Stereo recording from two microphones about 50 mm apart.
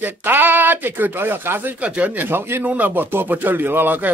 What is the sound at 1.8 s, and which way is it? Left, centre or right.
Speech, right.